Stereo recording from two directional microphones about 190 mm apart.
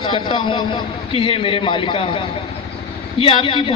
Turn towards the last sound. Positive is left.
turn(degrees=25)  # may be behind; listen again after turning